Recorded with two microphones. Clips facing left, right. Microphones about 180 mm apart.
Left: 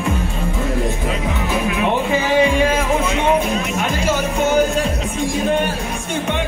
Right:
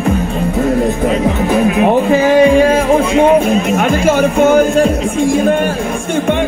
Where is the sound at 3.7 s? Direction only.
55° right (ahead or behind).